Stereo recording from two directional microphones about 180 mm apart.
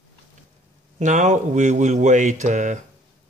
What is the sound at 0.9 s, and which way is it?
Speech, 45° right (ahead or behind).